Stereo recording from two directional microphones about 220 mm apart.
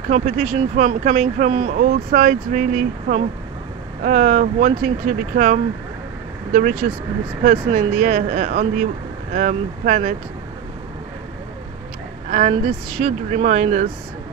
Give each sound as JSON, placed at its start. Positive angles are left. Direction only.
{"t": 0.1, "sound": "speech", "side_deg": -35}
{"t": 12.3, "sound": "speech", "side_deg": -35}